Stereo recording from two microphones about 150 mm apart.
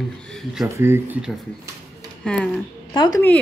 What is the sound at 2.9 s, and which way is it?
Speech, 30° left (ahead or behind).